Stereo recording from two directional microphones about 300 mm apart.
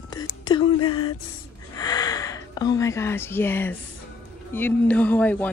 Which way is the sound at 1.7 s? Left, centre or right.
Centre.